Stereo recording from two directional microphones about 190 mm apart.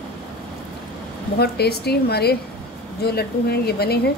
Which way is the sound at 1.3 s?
55° left (ahead or behind).